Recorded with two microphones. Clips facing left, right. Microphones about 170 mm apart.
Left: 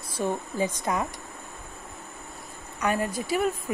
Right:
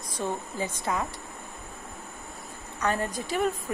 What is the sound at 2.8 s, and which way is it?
Speech, 10° left (ahead or behind).